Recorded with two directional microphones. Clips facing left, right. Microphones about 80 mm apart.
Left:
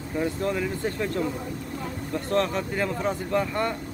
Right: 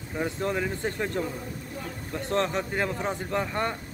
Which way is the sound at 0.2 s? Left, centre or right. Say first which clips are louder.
Left 1 dB; centre.